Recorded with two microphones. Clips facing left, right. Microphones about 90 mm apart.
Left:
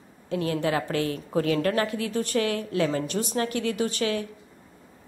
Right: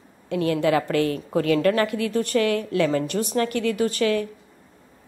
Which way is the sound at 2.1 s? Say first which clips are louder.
Right 4 dB; 60° right (ahead or behind).